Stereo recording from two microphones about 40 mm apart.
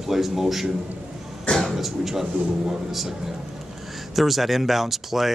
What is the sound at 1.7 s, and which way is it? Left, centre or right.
A man's voice, centre.